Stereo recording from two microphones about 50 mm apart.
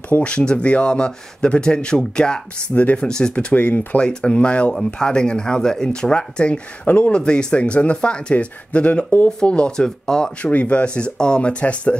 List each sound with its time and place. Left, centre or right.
0.2 s speech: left
2.7 s speech: left
3.1 s speech: centre
3.3 s speech: left
4.0 s speech: centre
10.4 s speech: left